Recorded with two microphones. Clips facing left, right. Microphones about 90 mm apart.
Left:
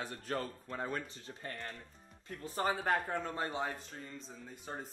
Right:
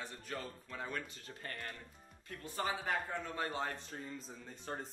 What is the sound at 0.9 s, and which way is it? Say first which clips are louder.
Speech: left 2 dB; 20° left (ahead or behind).